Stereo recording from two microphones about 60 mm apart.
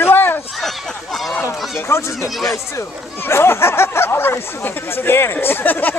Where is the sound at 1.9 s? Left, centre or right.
Left.